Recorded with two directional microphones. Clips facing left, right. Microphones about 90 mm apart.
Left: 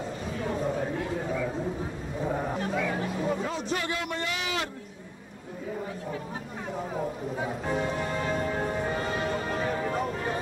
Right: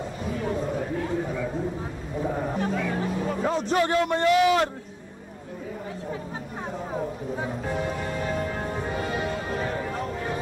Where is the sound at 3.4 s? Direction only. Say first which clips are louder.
Right 7 dB; 40° right (ahead or behind).